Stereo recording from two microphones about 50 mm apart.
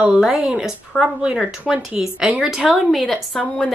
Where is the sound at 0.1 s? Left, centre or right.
Centre.